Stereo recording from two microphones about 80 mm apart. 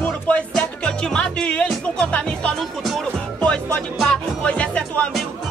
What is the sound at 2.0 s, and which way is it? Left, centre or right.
Speech, centre.